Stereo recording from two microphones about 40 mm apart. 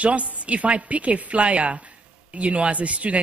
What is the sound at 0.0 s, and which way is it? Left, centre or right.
A woman's voice, right.